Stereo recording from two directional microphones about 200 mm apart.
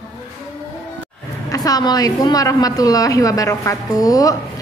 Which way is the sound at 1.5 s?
20° left (ahead or behind).